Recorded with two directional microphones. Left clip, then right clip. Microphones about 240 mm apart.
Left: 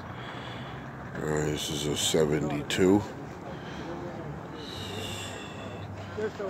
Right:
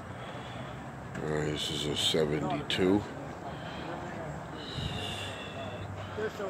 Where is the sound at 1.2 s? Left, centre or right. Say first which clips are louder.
Left 3 dB; centre.